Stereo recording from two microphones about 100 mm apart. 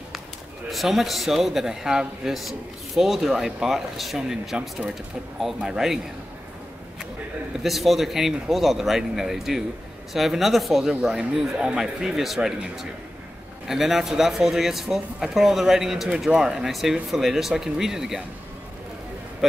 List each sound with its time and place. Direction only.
0.7 s speech: centre (ahead or behind)
7.6 s speech: centre (ahead or behind)